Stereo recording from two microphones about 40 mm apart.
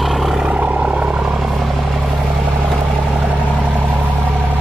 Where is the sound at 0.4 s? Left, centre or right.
Right.